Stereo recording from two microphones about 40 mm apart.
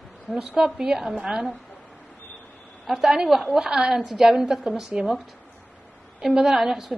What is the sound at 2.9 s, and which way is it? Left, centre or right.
A woman's voice, centre.